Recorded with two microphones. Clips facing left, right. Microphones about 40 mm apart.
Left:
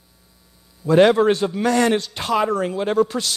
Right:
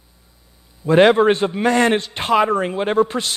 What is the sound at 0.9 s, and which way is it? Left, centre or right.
A man's voice, right.